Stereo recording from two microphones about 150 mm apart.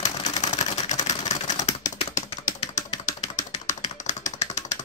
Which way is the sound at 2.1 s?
55° left (ahead or behind).